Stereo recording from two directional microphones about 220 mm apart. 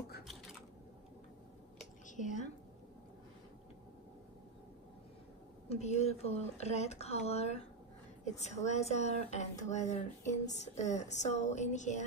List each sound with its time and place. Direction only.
2.0 s a woman's voice: 35° left (ahead or behind)
5.7 s speech: 30° left (ahead or behind)